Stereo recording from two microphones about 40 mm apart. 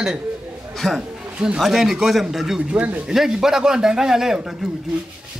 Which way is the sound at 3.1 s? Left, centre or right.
Centre.